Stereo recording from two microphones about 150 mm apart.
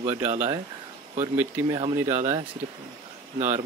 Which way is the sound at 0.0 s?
15° right (ahead or behind).